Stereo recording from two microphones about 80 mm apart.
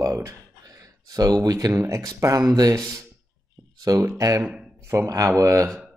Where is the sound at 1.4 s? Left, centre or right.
Right.